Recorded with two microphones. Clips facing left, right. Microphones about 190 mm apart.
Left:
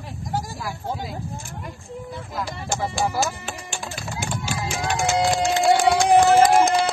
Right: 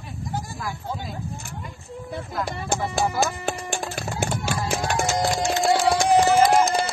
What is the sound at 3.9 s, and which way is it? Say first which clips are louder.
Clip-clop: right 3 dB; 60° right (ahead or behind).